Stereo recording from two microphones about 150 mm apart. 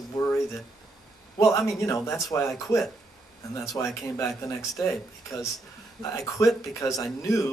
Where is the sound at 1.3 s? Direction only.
20° left (ahead or behind).